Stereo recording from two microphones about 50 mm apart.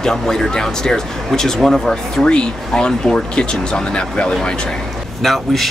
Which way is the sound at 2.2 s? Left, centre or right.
Centre.